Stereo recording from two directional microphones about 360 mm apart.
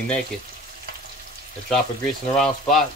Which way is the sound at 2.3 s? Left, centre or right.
Centre.